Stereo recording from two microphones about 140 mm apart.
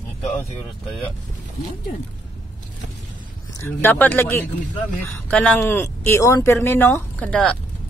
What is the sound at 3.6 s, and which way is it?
Speech, 15° left (ahead or behind).